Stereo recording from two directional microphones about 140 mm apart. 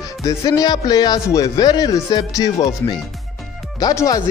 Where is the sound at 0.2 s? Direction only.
25° left (ahead or behind).